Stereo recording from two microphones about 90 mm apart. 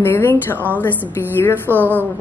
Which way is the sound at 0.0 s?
25° left (ahead or behind).